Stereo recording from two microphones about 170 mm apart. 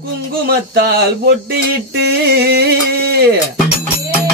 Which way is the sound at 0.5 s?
70° right (ahead or behind).